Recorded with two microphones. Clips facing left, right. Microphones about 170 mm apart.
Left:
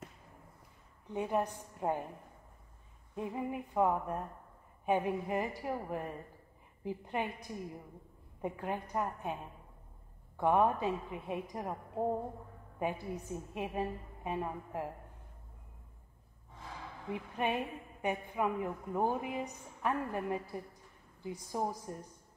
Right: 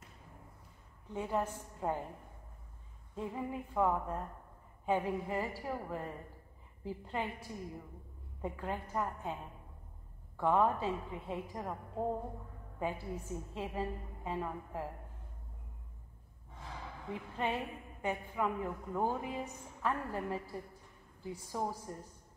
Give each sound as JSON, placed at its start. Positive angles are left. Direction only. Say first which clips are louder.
{"t": 1.1, "sound": "a woman's voice", "louder": "left 2 dB", "side_deg": 15}
{"t": 3.2, "sound": "a woman's voice", "louder": "left 2 dB", "side_deg": 15}
{"t": 17.1, "sound": "a woman's voice", "louder": "left 2 dB", "side_deg": 15}